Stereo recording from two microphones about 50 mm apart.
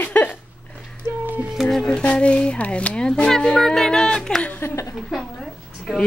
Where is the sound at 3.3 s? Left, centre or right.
Centre.